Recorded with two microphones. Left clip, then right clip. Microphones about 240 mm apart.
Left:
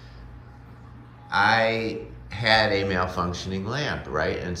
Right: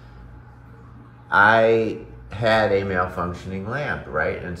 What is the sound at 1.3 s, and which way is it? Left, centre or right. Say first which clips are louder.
Speech: right 6 dB; centre.